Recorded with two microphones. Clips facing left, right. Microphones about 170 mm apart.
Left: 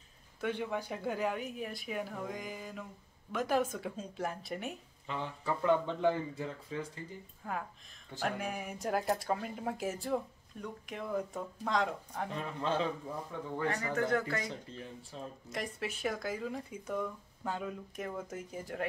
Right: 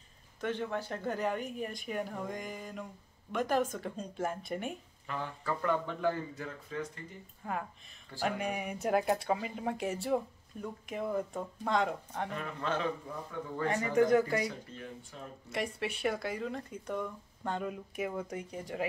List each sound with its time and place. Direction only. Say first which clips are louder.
0.4 s speech: right 1 dB; 10° left (ahead or behind)
5.0 s speech: even; 25° left (ahead or behind)
7.4 s speech: right 2 dB; centre (ahead or behind)
12.4 s speech: left 3 dB; 30° left (ahead or behind)
13.7 s speech: right 6 dB; 15° right (ahead or behind)
15.1 s speech: left 6 dB; 25° left (ahead or behind)
15.5 s speech: right 4 dB; centre (ahead or behind)